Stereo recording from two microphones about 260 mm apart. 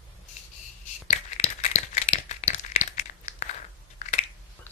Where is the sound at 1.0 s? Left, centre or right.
Left.